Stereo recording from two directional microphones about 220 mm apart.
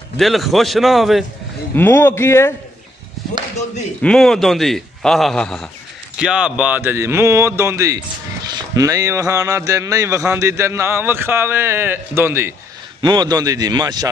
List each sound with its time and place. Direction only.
0.2 s a man's voice: centre (ahead or behind)
1.8 s a man's voice: 10° left (ahead or behind)
4.0 s a man's voice: centre (ahead or behind); by 14.0 s 15° right (ahead or behind)